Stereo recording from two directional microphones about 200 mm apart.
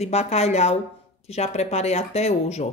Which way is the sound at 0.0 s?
30° left (ahead or behind).